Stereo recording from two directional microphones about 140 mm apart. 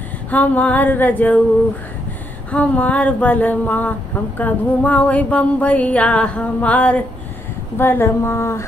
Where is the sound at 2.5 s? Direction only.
10° left (ahead or behind).